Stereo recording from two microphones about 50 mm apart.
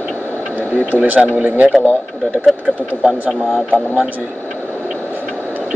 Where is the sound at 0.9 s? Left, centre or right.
Right.